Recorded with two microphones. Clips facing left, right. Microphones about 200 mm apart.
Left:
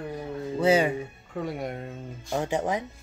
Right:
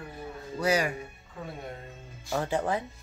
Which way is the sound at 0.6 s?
25° left (ahead or behind).